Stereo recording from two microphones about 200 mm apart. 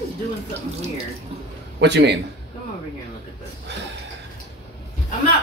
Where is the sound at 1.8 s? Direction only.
60° right (ahead or behind).